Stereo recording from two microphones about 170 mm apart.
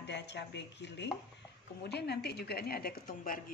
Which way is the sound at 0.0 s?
90° left.